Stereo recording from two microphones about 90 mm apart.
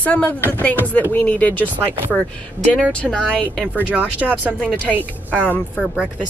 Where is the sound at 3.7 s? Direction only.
20° right (ahead or behind).